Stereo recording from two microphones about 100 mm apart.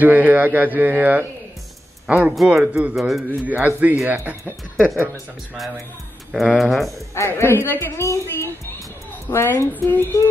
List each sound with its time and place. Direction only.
0.0 s speech: 20° right (ahead or behind)
3.0 s speech: centre (ahead or behind)
3.3 s speech: 20° right (ahead or behind)
6.3 s speech: centre (ahead or behind)
7.2 s a woman's voice: 25° left (ahead or behind)